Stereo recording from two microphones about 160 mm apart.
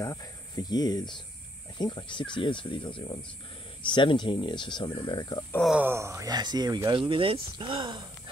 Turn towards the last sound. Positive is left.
turn(degrees=-30)  # may be behind; listen again after turning